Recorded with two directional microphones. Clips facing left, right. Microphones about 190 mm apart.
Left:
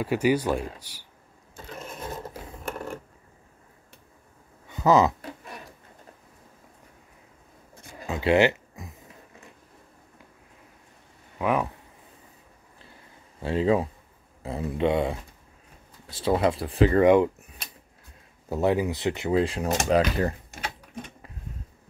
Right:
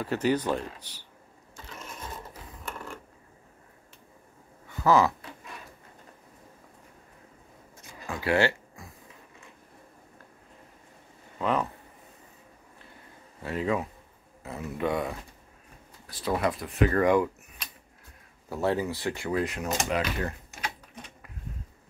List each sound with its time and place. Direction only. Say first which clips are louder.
0.0 s speech: left 3 dB; 10° left (ahead or behind)
4.6 s a sound: left 3 dB; 20° left (ahead or behind)
8.1 s speech: left 5 dB; 20° left (ahead or behind)
11.3 s speech: left 2 dB; 10° left (ahead or behind)
13.4 s speech: left 6 dB; 30° left (ahead or behind)
18.5 s speech: left 4 dB; 15° left (ahead or behind); by 20.3 s 35° left (ahead or behind)